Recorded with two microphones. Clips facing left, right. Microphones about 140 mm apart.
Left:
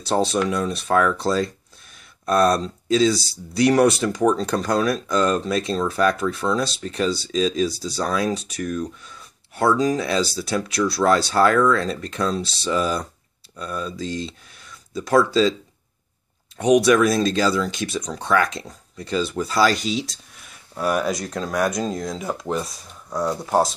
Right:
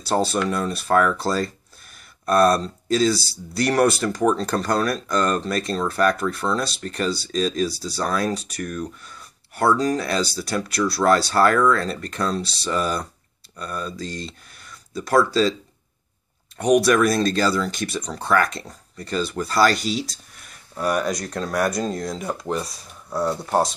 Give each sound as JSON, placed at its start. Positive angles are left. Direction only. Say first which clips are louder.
{"t": 0.0, "sound": "speech", "louder": "left 1 dB", "side_deg": 0}
{"t": 16.5, "sound": "speech", "louder": "left 1 dB", "side_deg": 0}